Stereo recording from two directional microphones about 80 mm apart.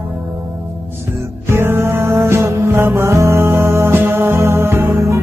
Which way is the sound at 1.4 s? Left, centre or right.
Right.